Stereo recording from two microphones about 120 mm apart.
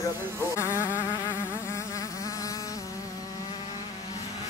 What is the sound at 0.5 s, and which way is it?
Insect, 20° left (ahead or behind).